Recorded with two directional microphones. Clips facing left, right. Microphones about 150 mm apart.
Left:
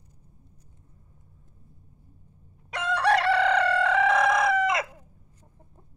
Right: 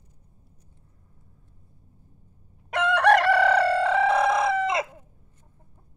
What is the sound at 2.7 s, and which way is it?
Chicken, 55° right (ahead or behind).